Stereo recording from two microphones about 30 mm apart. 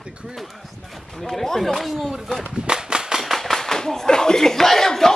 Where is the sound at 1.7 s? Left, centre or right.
Centre.